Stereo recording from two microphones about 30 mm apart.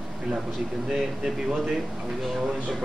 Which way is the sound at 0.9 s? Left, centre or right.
Centre.